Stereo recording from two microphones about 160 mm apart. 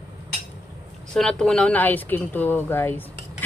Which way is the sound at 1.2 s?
5° left (ahead or behind).